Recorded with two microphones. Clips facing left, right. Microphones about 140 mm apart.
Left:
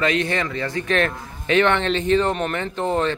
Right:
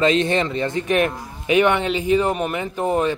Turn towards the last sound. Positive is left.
turn(degrees=-10)  # may be behind; listen again after turning